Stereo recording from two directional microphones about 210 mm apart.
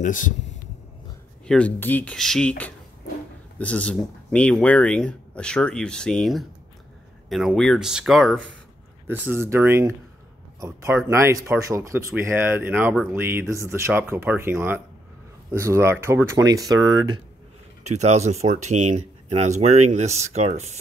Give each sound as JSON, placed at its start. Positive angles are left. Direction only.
{"t": 0.0, "sound": "speech", "side_deg": 40}
{"t": 1.5, "sound": "speech", "side_deg": 5}
{"t": 17.8, "sound": "speech", "side_deg": -30}